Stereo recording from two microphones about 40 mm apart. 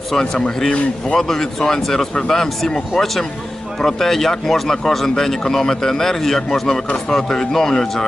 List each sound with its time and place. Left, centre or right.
0.1 s speech: centre